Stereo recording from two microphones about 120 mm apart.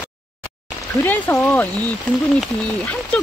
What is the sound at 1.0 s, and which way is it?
Speech, 20° left (ahead or behind).